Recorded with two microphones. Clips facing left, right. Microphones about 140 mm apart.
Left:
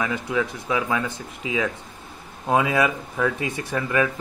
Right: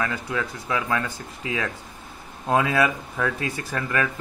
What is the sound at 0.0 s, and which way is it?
Speech, 15° left (ahead or behind).